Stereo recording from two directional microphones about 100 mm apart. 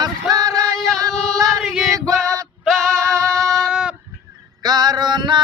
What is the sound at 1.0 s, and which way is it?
Singing, 35° right (ahead or behind).